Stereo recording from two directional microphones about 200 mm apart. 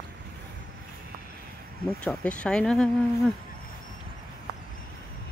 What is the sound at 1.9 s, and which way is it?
Speech, 5° left (ahead or behind).